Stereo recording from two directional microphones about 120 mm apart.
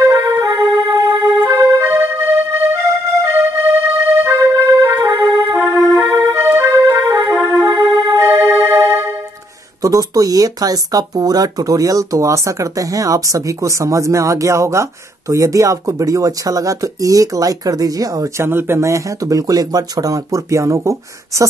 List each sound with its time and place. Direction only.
0.0 s music: 25° right (ahead or behind)
9.8 s speech: 30° right (ahead or behind)